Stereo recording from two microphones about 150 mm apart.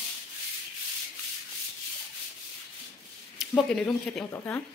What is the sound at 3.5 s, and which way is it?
Speech, 10° left (ahead or behind).